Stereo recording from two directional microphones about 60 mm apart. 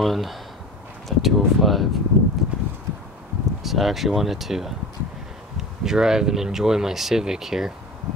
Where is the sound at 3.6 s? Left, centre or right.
Centre.